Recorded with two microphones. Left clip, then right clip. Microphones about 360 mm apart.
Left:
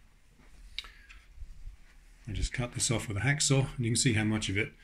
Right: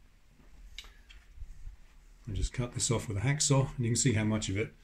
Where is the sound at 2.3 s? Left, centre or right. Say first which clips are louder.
Left 3 dB; centre.